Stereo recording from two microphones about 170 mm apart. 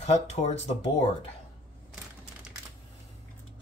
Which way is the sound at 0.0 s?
40° left (ahead or behind).